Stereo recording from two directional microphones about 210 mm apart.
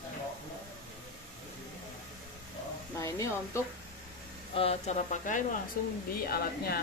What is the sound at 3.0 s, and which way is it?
Speech, 15° left (ahead or behind).